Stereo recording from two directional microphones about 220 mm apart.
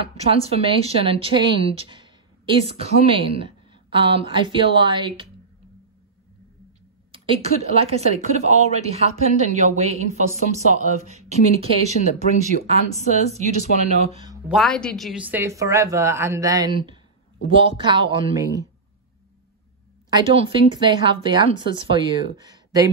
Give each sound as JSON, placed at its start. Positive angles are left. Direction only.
{"t": 0.0, "sound": "a woman's voice", "side_deg": -25}
{"t": 7.1, "sound": "a woman's voice", "side_deg": -25}
{"t": 14.5, "sound": "a woman's voice", "side_deg": 0}
{"t": 20.1, "sound": "a woman's voice", "side_deg": -25}